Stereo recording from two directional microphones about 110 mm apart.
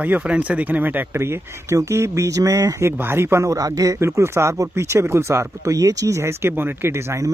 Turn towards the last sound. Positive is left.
turn(degrees=-20)  # may be behind; listen again after turning